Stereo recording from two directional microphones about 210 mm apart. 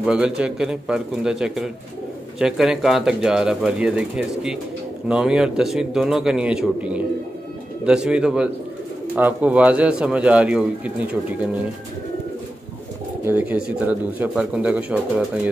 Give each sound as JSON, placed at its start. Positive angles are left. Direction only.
{"t": 0.0, "sound": "speech", "side_deg": -5}
{"t": 13.2, "sound": "speech", "side_deg": -10}